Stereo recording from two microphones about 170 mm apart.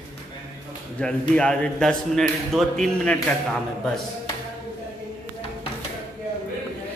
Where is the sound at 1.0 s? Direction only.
5° left (ahead or behind).